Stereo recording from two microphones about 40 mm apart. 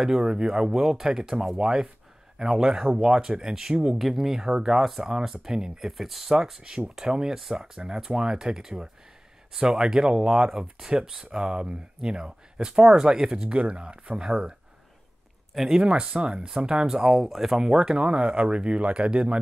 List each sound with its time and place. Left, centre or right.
0.0 s speech: centre
4.0 s speech: centre
5.9 s speech: centre
6.3 s speech: centre
15.8 s speech: right
16.4 s speech: centre
17.6 s speech: centre